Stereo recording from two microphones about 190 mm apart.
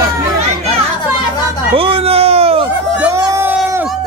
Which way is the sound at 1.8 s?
30° right (ahead or behind).